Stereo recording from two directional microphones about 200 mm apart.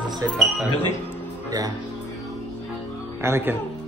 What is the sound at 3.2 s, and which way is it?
Speech, 10° right (ahead or behind).